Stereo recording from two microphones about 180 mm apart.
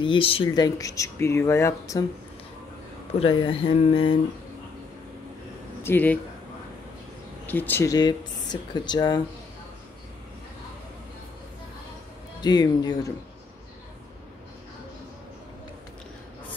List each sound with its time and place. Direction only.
0.0 s speech: 30° left (ahead or behind)
3.2 s speech: 30° left (ahead or behind)
5.8 s speech: 10° left (ahead or behind)
7.4 s speech: 10° left (ahead or behind)
12.4 s speech: 20° left (ahead or behind)